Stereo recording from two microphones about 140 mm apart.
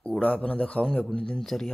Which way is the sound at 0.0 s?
10° left (ahead or behind).